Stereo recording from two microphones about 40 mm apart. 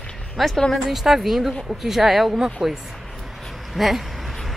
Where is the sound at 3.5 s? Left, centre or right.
Centre.